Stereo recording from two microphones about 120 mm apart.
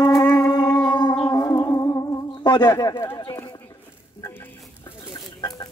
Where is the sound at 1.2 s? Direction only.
30° left (ahead or behind).